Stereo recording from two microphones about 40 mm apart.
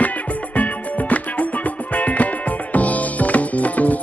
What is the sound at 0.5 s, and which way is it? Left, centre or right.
Music, left.